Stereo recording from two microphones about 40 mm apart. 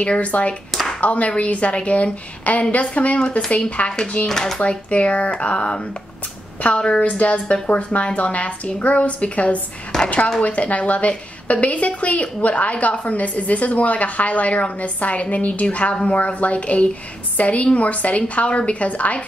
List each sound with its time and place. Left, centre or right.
0.0 s a woman's voice: left
3.2 s speech: left
4.3 s speech: centre
4.6 s a woman's voice: left